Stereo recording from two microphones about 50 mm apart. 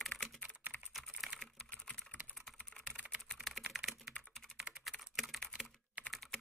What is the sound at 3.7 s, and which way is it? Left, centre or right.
Typing, centre.